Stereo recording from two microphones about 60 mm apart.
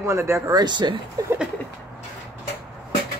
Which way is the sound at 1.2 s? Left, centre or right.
Right.